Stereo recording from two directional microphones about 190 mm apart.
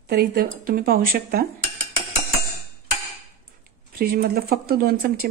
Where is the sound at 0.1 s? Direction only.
55° right (ahead or behind).